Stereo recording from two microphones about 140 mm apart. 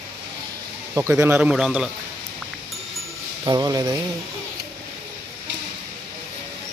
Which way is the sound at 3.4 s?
30° right (ahead or behind).